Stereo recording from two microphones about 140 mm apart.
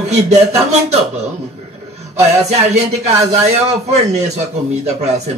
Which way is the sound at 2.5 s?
50° right (ahead or behind).